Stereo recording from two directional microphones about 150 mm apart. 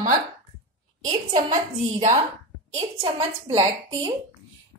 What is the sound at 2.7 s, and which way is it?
A woman's voice, 40° right (ahead or behind).